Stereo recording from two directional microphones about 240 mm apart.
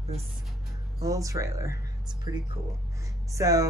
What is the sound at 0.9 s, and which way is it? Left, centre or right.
Speech, centre.